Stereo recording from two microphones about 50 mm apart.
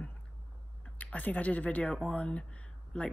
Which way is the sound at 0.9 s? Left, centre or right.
Left.